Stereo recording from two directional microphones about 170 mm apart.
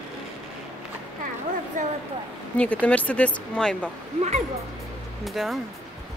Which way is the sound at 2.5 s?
10° left (ahead or behind).